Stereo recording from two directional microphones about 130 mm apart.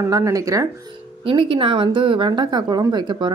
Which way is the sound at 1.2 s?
45° right (ahead or behind).